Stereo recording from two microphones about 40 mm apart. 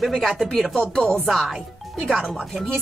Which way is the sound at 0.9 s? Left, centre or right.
Centre.